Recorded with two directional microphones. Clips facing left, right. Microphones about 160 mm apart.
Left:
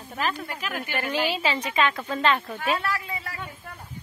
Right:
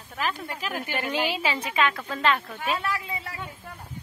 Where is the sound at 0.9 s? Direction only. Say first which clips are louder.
Left 2 dB; 15° right (ahead or behind).